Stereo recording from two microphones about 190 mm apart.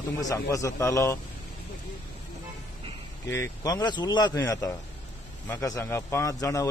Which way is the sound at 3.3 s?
15° left (ahead or behind).